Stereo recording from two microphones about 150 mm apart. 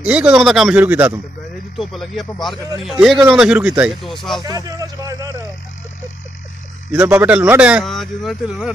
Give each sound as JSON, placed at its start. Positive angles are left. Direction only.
{"t": 0.0, "sound": "speech", "side_deg": -5}
{"t": 1.8, "sound": "speech", "side_deg": 0}
{"t": 4.5, "sound": "speech", "side_deg": -25}
{"t": 6.9, "sound": "speech", "side_deg": -15}
{"t": 7.8, "sound": "speech", "side_deg": 0}